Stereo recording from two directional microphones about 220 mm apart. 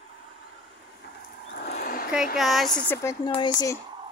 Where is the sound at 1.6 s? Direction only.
40° left (ahead or behind).